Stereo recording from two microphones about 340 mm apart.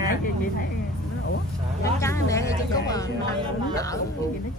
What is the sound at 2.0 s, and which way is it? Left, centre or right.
Speech, centre.